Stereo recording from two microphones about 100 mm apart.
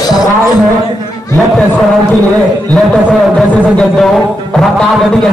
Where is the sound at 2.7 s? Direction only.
5° left (ahead or behind).